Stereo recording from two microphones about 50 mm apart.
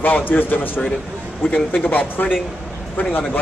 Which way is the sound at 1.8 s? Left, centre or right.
Left.